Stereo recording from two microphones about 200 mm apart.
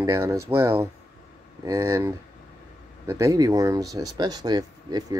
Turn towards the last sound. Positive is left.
turn(degrees=-20)  # may be behind; listen again after turning